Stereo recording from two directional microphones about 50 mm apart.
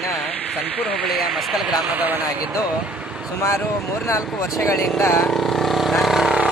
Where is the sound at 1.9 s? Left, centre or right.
Right.